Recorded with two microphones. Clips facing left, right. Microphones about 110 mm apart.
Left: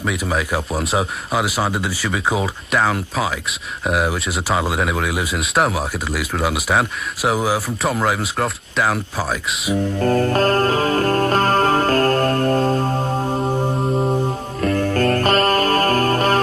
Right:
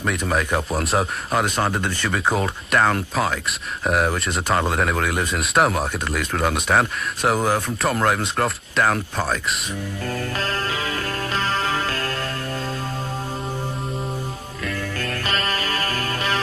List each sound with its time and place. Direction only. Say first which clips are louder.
0.0 s speech: left 1 dB; centre (ahead or behind)
9.8 s music: left 10 dB; 45° left (ahead or behind)